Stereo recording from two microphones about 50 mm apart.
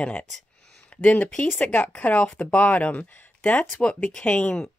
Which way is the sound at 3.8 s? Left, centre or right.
Left.